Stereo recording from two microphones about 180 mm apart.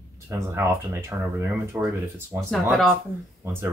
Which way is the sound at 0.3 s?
15° right (ahead or behind).